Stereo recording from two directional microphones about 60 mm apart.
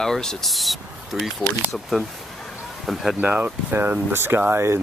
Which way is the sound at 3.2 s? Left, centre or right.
Right.